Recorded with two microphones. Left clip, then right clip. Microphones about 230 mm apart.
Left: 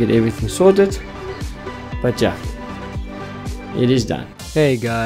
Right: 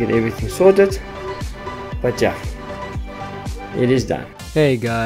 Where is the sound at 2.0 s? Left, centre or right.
Centre.